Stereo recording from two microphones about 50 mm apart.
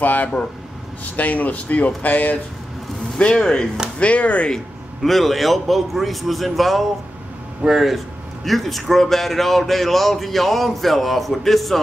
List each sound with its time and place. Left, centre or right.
0.0 s speech: left
3.3 s speech: centre
4.0 s speech: left
5.0 s a man's voice: centre